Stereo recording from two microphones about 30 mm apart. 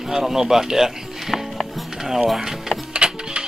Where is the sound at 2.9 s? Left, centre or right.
Right.